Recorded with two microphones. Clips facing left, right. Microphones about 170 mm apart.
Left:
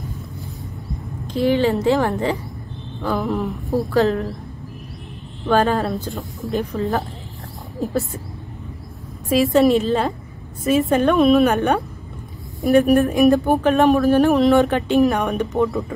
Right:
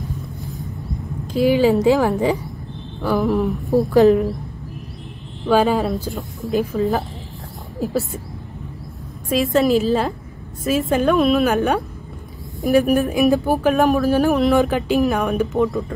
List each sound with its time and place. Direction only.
1.3 s a woman's voice: 10° right (ahead or behind)
5.5 s speech: 5° right (ahead or behind)
9.3 s speech: centre (ahead or behind)